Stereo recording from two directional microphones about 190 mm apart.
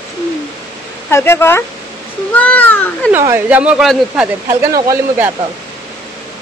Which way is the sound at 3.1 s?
10° right (ahead or behind).